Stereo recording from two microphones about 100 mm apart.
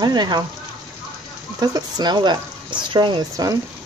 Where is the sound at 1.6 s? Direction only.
45° right (ahead or behind).